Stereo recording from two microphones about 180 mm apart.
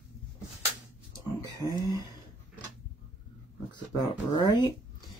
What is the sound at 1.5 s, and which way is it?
Speech, 20° left (ahead or behind).